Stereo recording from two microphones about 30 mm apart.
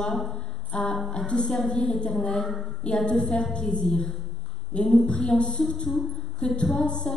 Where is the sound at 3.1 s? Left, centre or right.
Left.